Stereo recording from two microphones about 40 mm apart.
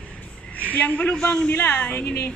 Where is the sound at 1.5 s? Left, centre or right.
Left.